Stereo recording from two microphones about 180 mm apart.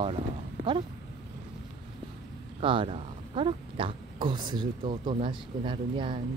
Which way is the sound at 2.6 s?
30° right (ahead or behind).